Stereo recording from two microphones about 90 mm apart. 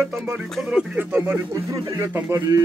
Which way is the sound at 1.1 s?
20° right (ahead or behind).